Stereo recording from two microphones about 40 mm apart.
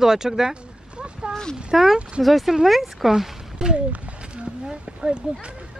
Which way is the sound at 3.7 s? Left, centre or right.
Right.